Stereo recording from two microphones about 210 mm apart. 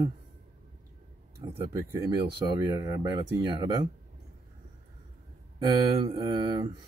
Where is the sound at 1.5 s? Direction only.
10° right (ahead or behind).